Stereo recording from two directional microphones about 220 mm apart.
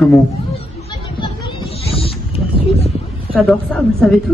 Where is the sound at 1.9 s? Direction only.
25° left (ahead or behind).